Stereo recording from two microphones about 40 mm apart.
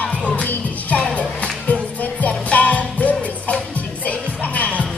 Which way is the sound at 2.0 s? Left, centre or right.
Left.